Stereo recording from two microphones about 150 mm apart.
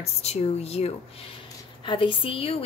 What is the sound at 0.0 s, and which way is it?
A woman's voice, 45° left (ahead or behind).